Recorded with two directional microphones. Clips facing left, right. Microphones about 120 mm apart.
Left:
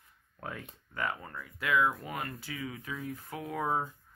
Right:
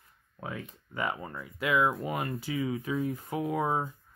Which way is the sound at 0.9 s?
15° right (ahead or behind).